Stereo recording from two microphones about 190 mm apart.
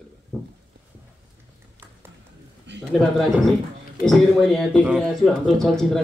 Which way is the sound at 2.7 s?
65° right (ahead or behind).